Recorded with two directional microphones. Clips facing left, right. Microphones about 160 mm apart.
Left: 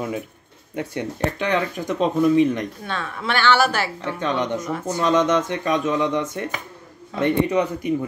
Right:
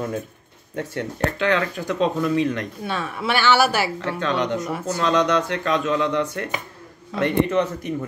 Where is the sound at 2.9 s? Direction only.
10° right (ahead or behind).